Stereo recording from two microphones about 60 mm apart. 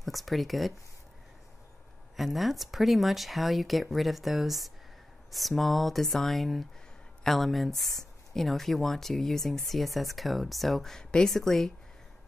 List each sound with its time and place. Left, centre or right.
0.0 s speech: centre
2.1 s speech: centre